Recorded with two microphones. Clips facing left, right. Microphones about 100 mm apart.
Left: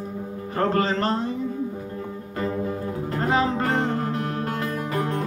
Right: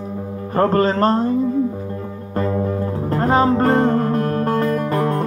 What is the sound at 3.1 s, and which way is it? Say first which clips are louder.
Music: right 7 dB; 40° right (ahead or behind).